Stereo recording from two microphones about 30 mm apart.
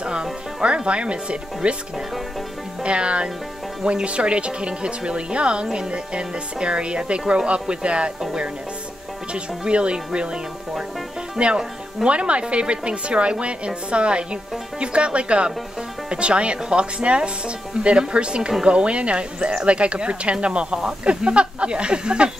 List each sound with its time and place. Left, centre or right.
0.0 s speech: right
2.8 s speech: right
9.3 s speech: right